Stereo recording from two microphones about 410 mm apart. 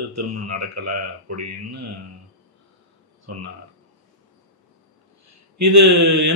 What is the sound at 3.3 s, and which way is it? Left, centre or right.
Speech, right.